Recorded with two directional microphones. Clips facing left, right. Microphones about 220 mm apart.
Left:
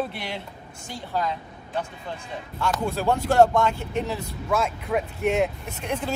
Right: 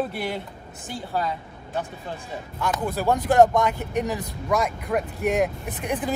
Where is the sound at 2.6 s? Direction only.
15° right (ahead or behind).